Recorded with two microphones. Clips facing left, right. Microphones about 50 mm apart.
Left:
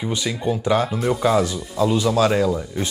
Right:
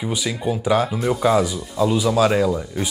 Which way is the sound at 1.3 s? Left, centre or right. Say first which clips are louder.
Right 1 dB; centre.